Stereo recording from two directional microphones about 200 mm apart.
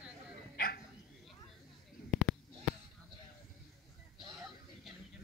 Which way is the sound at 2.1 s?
Centre (ahead or behind).